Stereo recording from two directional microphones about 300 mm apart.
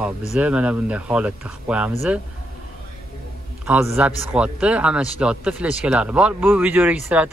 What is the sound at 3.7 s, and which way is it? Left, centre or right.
Speech, centre.